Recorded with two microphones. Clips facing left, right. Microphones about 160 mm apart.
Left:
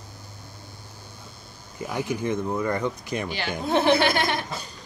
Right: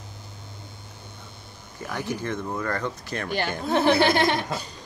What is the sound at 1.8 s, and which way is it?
Speech, 15° left (ahead or behind).